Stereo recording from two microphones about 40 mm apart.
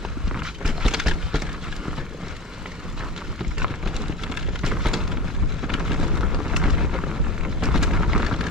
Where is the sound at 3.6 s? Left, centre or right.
Centre.